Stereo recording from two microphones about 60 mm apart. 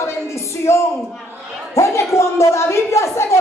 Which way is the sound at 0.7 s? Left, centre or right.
Left.